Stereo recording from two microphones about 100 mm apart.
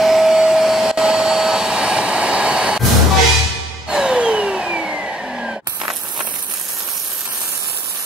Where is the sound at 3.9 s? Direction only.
5° right (ahead or behind).